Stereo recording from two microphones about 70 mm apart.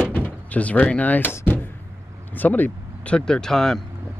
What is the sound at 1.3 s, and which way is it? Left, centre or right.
Door, left.